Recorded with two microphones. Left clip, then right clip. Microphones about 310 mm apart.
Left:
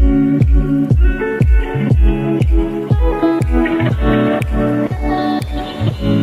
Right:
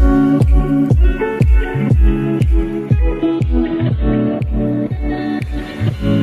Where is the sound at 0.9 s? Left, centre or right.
Centre.